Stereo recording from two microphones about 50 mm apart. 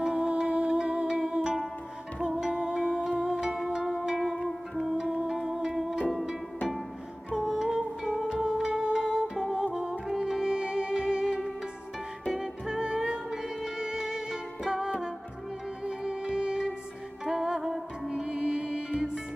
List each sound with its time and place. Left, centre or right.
0.0 s music: centre
7.3 s music: centre
18.1 s music: centre